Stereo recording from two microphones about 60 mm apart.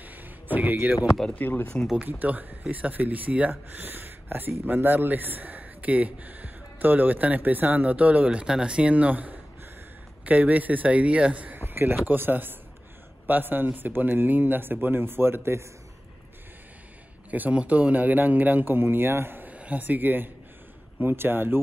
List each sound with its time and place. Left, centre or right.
0.0 s a sound: right
1.3 s speech: left
2.0 s speech: right
17.3 s speech: right
19.5 s speech: right